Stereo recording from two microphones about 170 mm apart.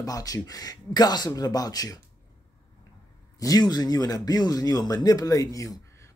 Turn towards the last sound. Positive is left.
turn(degrees=20)  # may be behind; listen again after turning